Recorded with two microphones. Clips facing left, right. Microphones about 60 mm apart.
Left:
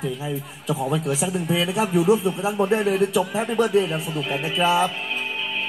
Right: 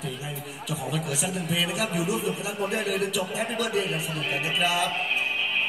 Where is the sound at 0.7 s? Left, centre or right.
Left.